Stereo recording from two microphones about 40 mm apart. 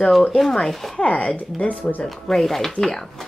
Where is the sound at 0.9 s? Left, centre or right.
Left.